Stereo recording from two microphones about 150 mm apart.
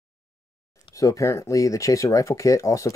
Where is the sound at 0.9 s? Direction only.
20° left (ahead or behind).